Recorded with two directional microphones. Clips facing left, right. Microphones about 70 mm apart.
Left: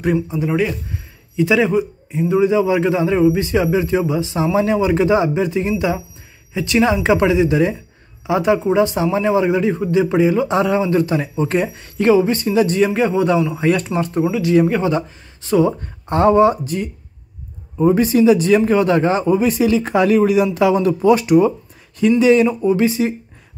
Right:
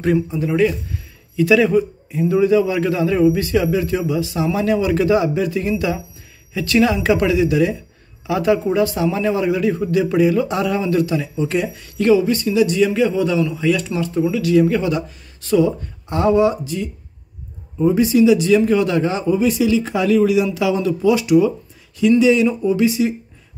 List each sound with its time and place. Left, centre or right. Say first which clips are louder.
0.0 s a man's voice: even; centre; by 14.3 s left
14.3 s a man's voice: even; left